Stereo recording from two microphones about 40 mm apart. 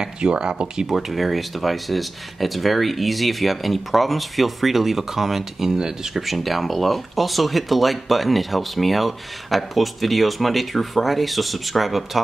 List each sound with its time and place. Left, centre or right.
0.0 s speech: right
0.8 s speech: centre
6.1 s speech: centre